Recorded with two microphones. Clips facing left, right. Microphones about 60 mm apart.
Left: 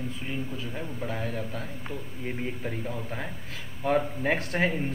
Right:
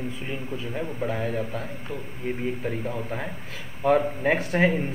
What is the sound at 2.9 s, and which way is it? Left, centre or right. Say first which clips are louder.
A man's voice: right 4 dB; centre.